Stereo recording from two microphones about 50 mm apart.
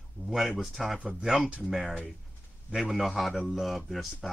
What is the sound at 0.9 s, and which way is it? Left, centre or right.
Speech, centre.